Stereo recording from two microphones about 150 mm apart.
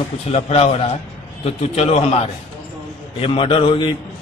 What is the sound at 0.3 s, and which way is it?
A man's voice, 45° left (ahead or behind).